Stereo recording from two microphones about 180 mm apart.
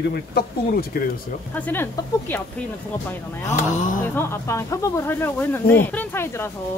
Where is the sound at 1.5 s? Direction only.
10° left (ahead or behind).